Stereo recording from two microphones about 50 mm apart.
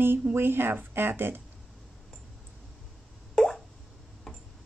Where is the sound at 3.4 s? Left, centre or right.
Centre.